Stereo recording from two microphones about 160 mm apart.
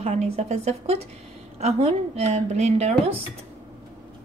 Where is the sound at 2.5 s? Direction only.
45° right (ahead or behind).